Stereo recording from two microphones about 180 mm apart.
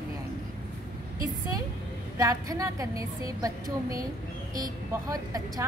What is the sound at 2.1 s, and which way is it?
A woman's voice, 20° right (ahead or behind).